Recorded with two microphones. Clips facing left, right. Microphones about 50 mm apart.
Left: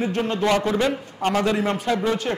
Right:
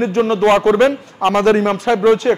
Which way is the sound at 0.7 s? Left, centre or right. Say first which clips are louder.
Right 9 dB; right.